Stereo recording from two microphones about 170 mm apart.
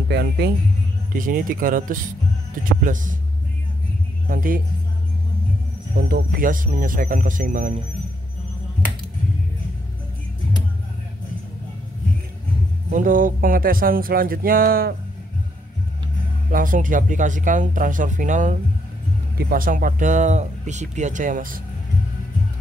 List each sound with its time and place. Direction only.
0.1 s speech: 75° right (ahead or behind)
1.1 s speech: 55° right (ahead or behind)
4.3 s speech: 55° right (ahead or behind)
5.9 s speech: 65° right (ahead or behind)
12.9 s speech: 50° right (ahead or behind)
16.5 s speech: 50° right (ahead or behind)